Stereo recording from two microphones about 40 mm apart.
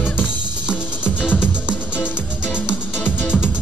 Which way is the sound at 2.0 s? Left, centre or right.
Left.